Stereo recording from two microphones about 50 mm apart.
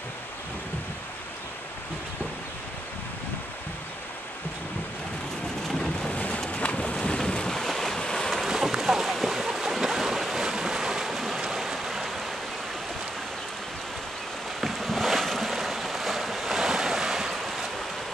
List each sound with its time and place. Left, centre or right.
5.9 s rain: centre
6.4 s boat: left
8.5 s boat: centre
11.4 s a sound: centre
14.6 s boat: centre